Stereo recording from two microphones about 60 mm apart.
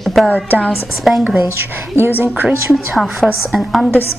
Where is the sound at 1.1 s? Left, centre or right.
Centre.